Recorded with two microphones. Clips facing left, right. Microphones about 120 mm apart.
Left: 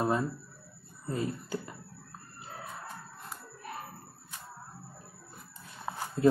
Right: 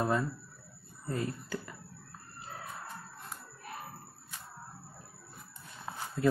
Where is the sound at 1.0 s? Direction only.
20° left (ahead or behind).